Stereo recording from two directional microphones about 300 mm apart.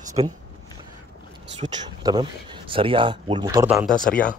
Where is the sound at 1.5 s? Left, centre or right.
Centre.